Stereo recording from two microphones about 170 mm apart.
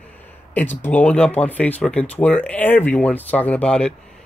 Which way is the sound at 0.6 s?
10° left (ahead or behind).